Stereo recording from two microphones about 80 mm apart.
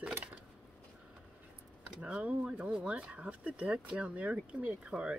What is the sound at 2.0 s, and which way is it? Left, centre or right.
Speech, centre.